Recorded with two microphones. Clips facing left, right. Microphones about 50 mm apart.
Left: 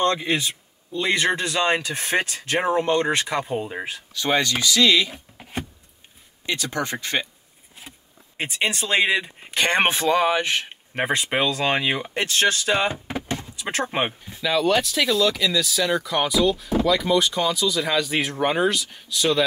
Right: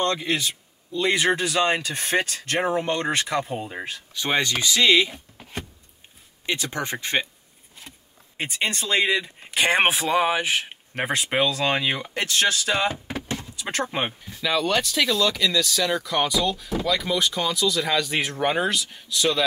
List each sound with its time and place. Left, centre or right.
0.0 s a sound: centre
1.0 s speech: centre
4.1 s speech: centre
6.4 s speech: centre
8.6 s speech: centre
9.5 s speech: centre
11.0 s speech: centre
13.1 s vehicle: left
13.6 s door: centre
13.8 s speech: centre
14.4 s speech: centre